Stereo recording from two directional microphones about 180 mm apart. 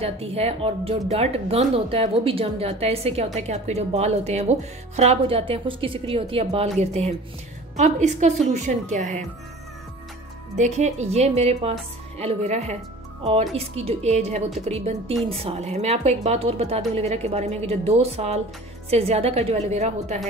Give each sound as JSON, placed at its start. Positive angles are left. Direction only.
{"t": 0.0, "sound": "speech", "side_deg": -35}
{"t": 10.5, "sound": "speech", "side_deg": -40}